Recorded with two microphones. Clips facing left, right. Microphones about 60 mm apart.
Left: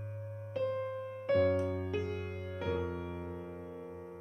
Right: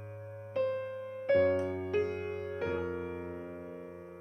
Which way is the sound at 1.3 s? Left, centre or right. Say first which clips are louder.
Right 2 dB; right.